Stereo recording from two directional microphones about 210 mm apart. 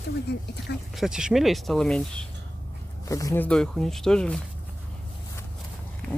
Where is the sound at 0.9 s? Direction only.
Centre (ahead or behind).